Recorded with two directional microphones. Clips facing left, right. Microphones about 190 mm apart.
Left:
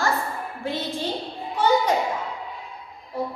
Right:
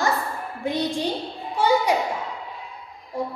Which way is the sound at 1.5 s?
10° right (ahead or behind).